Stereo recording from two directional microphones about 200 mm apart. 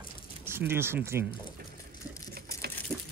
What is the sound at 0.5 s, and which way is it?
Speech, 10° right (ahead or behind).